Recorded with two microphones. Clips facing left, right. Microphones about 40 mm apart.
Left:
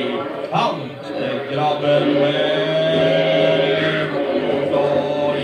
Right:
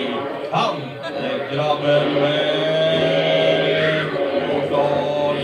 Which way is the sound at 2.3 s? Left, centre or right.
Centre.